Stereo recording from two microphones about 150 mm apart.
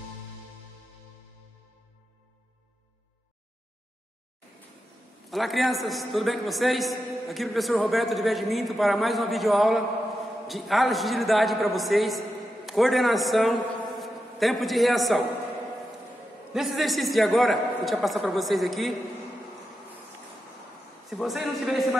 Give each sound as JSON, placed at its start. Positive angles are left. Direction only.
{"t": 5.3, "sound": "a man's voice", "side_deg": 0}
{"t": 16.5, "sound": "a man's voice", "side_deg": 0}
{"t": 21.1, "sound": "a man's voice", "side_deg": 0}